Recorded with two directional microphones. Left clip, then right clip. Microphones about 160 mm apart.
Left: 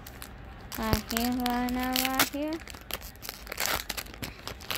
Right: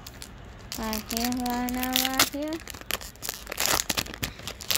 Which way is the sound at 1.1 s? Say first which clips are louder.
Right 3 dB; 15° left (ahead or behind).